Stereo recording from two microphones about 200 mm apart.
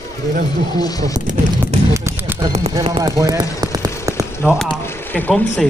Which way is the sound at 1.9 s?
15° right (ahead or behind).